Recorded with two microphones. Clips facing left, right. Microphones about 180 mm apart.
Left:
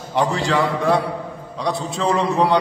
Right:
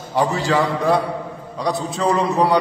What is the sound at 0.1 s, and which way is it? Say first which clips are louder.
Speech: right 1 dB; centre (ahead or behind).